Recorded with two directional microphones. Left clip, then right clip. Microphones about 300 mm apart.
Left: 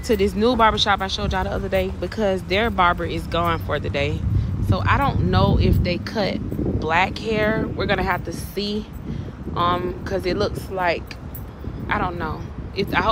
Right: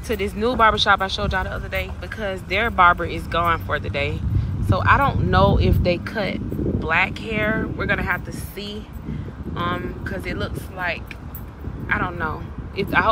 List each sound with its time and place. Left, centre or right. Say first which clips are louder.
0.1 s speech: left 4 dB; centre
10.3 s speech: left 6 dB; centre
11.9 s speech: right 1 dB; centre